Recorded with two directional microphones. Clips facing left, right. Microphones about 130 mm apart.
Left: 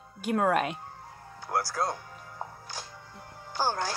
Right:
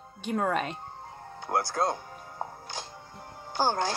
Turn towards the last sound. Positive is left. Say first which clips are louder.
# right 3 dB
turn(degrees=-25)  # may be behind; listen again after turning